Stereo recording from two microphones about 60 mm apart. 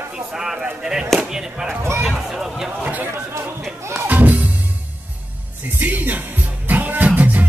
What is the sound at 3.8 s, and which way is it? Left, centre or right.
Music, right.